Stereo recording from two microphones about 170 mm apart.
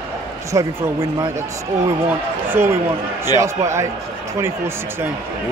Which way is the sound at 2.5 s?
15° right (ahead or behind).